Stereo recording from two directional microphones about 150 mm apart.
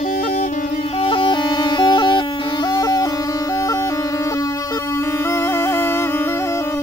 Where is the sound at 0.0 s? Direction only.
75° left (ahead or behind).